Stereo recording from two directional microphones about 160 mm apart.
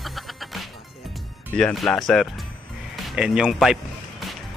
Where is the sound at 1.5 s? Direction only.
Centre (ahead or behind).